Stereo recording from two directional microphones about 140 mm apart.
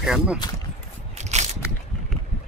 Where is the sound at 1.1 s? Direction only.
55° right (ahead or behind).